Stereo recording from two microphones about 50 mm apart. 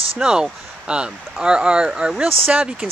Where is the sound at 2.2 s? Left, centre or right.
Right.